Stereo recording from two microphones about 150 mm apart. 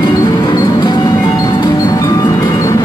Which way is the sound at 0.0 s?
25° left (ahead or behind).